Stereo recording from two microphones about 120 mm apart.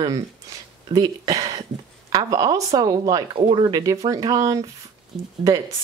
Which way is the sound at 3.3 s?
45° right (ahead or behind).